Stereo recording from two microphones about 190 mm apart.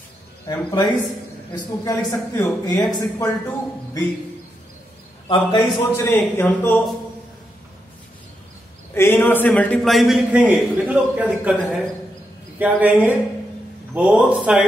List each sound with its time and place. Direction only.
0.5 s a man's voice: 20° left (ahead or behind)
5.3 s a man's voice: 20° left (ahead or behind)
8.9 s a man's voice: 10° left (ahead or behind); by 11.5 s 5° right (ahead or behind)
12.5 s a man's voice: 10° right (ahead or behind)